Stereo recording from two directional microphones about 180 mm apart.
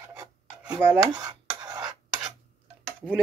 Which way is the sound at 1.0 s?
20° right (ahead or behind).